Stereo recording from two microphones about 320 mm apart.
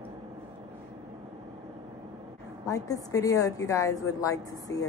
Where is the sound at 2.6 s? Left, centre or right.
Centre.